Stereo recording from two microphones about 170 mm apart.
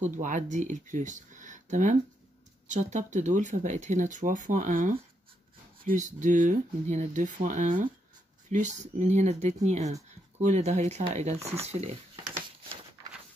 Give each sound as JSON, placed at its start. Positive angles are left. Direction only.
{"t": 0.0, "sound": "speech", "side_deg": -50}